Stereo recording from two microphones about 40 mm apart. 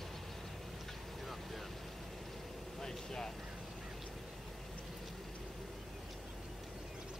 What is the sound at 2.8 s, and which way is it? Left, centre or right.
Vehicle, centre.